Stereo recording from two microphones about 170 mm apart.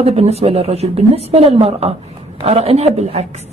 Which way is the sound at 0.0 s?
35° right (ahead or behind).